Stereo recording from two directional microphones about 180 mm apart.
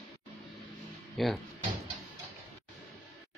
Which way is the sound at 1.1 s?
Centre (ahead or behind).